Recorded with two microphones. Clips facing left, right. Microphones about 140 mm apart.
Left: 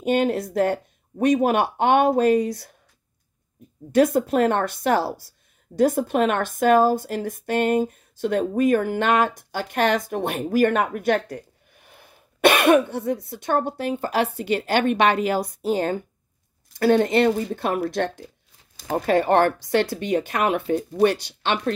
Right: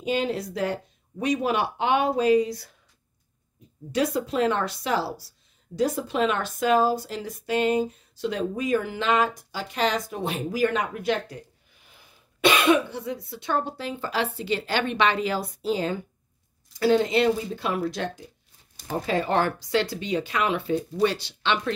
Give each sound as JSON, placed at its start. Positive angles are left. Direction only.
{"t": 0.0, "sound": "speech", "side_deg": 50}
{"t": 3.9, "sound": "a woman's voice", "side_deg": 50}
{"t": 18.8, "sound": "speech", "side_deg": 80}